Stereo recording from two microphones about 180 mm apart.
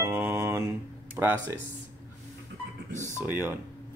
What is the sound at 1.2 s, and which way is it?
Speech, 5° right (ahead or behind).